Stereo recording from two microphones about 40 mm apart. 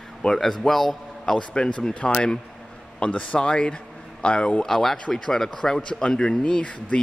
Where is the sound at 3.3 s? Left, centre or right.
Left.